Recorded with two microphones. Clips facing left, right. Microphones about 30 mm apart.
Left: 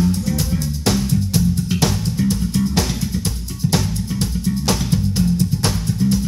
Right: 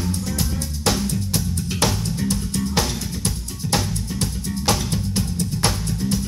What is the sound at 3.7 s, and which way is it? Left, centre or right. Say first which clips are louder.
Music: left 1 dB; centre.